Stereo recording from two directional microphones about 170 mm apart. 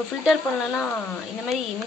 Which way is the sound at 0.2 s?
Centre (ahead or behind).